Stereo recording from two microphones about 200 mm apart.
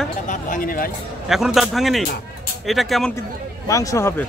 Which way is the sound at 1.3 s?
Centre (ahead or behind).